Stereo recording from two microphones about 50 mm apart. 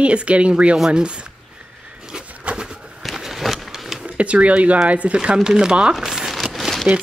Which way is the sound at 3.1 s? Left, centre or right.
Centre.